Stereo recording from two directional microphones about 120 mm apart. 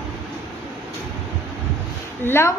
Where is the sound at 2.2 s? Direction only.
20° left (ahead or behind).